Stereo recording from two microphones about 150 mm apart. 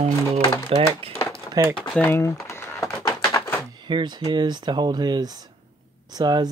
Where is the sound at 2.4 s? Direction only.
15° left (ahead or behind).